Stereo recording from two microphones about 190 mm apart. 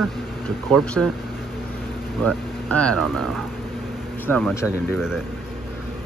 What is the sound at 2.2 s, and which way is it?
Speech, 5° left (ahead or behind).